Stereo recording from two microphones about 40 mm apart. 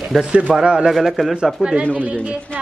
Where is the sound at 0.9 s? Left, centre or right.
Centre.